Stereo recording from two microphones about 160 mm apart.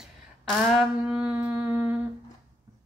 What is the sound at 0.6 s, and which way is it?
Speech, centre (ahead or behind).